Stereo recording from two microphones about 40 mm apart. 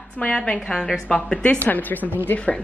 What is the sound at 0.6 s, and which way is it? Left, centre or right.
Speech, centre.